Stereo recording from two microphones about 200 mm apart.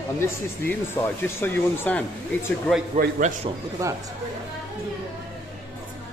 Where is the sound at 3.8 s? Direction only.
15° right (ahead or behind).